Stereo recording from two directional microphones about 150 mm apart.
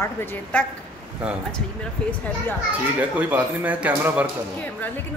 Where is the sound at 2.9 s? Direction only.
10° right (ahead or behind).